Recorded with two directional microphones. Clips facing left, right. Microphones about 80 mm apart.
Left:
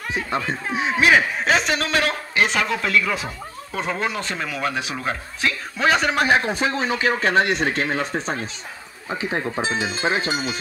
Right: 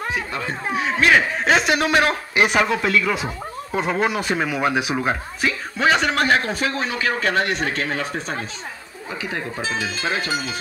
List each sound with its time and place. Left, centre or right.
0.7 s speech: centre
1.4 s a man's voice: centre; by 10.6 s left